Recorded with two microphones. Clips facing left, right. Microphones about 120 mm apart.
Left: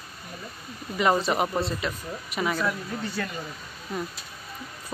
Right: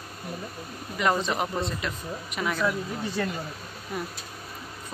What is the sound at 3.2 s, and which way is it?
Speech, 25° right (ahead or behind).